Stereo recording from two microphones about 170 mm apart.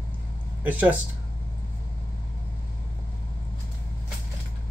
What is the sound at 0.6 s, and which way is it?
Speech, 10° right (ahead or behind).